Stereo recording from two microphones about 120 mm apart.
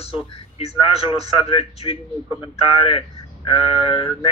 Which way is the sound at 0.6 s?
55° left (ahead or behind).